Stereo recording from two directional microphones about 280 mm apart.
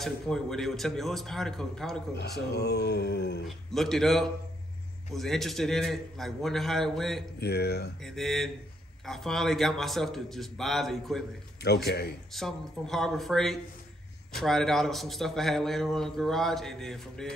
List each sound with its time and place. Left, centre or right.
0.0 s a man's voice: centre
2.5 s groan: left
3.4 s a man's voice: centre
7.3 s groan: left
8.0 s a man's voice: centre
11.6 s groan: left
12.3 s a man's voice: centre